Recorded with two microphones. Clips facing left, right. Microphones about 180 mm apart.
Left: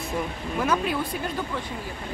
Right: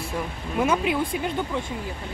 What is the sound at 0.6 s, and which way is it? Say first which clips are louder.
Speech: right 2 dB; 15° right (ahead or behind).